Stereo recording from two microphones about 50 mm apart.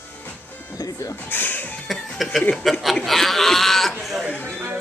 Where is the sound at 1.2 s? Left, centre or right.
Left.